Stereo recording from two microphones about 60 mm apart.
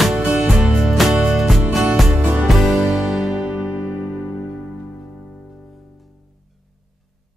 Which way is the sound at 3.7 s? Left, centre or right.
Centre.